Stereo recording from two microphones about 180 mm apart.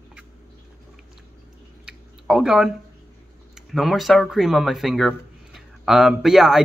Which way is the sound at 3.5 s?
Centre (ahead or behind).